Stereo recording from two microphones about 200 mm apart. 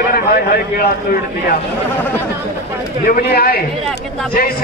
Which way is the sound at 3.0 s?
50° left (ahead or behind).